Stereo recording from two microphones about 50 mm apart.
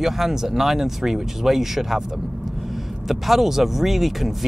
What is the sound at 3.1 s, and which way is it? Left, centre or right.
Speech, centre.